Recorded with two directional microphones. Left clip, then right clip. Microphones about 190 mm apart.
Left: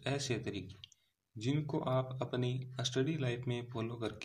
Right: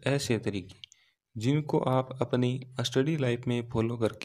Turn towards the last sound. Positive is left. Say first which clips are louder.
# right 11 dB
turn(degrees=-55)  # may be behind; listen again after turning